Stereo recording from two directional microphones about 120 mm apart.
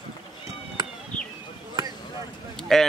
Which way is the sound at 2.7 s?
5° left (ahead or behind).